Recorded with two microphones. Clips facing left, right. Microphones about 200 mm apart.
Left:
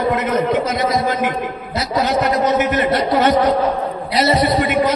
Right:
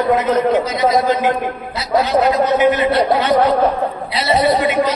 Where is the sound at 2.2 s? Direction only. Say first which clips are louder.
Right 3 dB; 50° left (ahead or behind).